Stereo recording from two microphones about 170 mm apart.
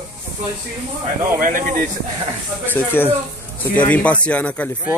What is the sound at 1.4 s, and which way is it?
Speech, 55° right (ahead or behind).